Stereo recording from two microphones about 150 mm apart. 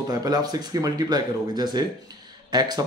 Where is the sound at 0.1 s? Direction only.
25° right (ahead or behind).